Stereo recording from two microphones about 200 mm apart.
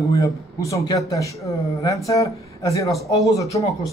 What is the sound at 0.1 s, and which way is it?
Speech, 15° left (ahead or behind).